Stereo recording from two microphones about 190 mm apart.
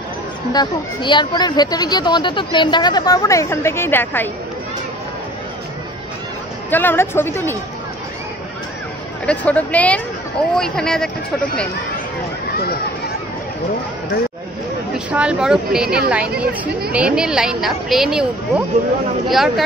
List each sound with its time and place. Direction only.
0.5 s a woman's voice: 25° left (ahead or behind)
6.7 s a woman's voice: 10° left (ahead or behind)
9.2 s a woman's voice: 5° left (ahead or behind)
15.0 s a woman's voice: 5° right (ahead or behind)
19.3 s a woman's voice: centre (ahead or behind)